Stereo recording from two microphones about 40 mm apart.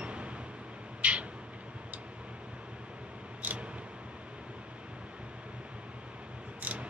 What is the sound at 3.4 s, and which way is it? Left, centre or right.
Vehicle, right.